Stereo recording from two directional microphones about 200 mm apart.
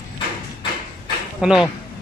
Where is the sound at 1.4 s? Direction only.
5° right (ahead or behind).